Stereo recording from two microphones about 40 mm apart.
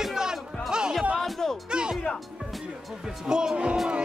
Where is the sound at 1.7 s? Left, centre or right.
Right.